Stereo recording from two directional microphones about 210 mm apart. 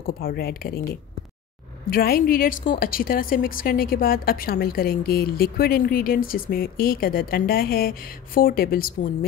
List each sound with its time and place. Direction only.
0.0 s a woman's voice: 45° left (ahead or behind)
1.9 s a woman's voice: 45° left (ahead or behind)